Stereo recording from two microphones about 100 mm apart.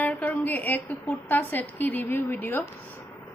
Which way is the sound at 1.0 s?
20° left (ahead or behind).